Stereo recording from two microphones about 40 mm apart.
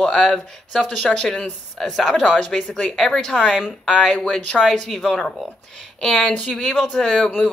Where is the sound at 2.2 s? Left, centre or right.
Left.